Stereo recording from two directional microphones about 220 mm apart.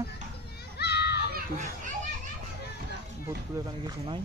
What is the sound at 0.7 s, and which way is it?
Children playing, 50° left (ahead or behind).